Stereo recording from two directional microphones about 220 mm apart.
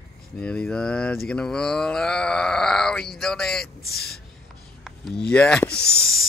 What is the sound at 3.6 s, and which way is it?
Speech, 45° left (ahead or behind).